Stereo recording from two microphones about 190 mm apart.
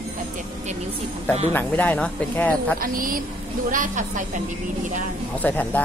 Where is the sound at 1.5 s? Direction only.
10° left (ahead or behind).